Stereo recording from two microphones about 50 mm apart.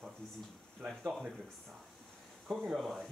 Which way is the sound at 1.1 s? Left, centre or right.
Centre.